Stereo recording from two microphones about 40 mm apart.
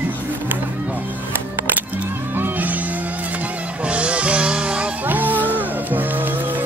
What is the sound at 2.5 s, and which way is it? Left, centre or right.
Music, right.